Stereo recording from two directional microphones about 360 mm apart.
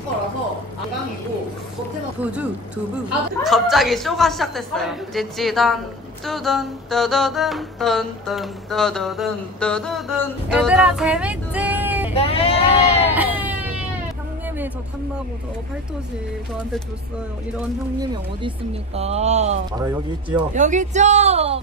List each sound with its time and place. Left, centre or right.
3.4 s music: centre
12.1 s sheep: centre
13.1 s baby cry: centre
18.9 s speech: centre